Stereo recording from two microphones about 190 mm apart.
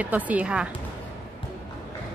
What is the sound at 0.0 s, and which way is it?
Speech, 10° right (ahead or behind).